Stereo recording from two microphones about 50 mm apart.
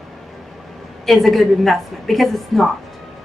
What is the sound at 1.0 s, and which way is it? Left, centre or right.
A woman's voice, centre.